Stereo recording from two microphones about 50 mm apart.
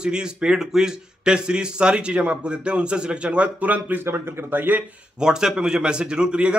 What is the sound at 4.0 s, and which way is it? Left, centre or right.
Speech, right.